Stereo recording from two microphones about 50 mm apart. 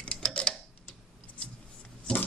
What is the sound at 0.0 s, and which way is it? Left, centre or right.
Clock, left.